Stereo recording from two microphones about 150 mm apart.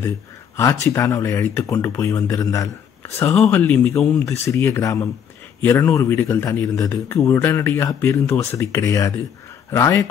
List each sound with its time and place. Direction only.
0.6 s speech: 20° left (ahead or behind)
4.3 s speech: 20° left (ahead or behind)